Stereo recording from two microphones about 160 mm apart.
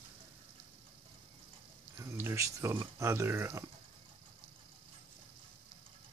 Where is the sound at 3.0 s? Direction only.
15° right (ahead or behind).